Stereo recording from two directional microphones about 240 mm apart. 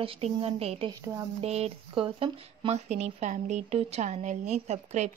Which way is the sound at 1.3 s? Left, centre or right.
Right.